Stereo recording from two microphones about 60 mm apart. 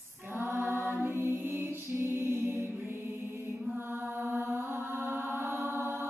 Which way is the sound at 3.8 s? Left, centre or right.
Right.